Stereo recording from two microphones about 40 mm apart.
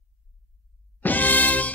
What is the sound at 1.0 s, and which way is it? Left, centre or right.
Music, left.